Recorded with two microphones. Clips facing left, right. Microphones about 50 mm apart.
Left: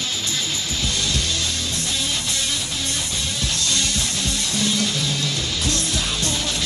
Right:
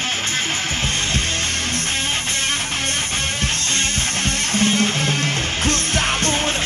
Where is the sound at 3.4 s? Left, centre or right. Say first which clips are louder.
Right 2 dB; right.